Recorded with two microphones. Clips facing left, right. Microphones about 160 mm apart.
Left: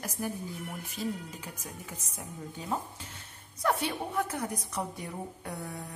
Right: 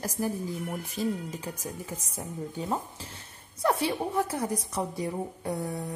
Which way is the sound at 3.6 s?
30° right (ahead or behind).